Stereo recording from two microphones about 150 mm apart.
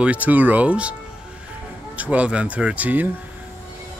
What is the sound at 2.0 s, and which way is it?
Speech, 10° right (ahead or behind).